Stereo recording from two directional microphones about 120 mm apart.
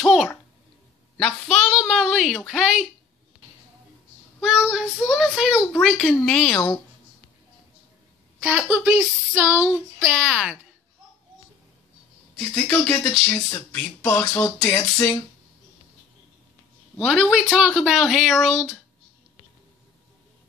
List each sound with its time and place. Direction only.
0.0 s a sound: centre (ahead or behind)
1.1 s speech: 5° left (ahead or behind)
4.4 s speech: centre (ahead or behind)
8.4 s speech: 10° right (ahead or behind)
10.1 s speech: 5° right (ahead or behind)
12.4 s speech: 5° left (ahead or behind)
17.0 s speech: 5° right (ahead or behind)